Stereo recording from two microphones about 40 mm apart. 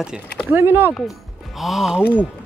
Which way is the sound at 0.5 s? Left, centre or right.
Right.